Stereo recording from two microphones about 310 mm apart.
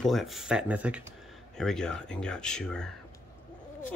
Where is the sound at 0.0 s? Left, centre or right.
Centre.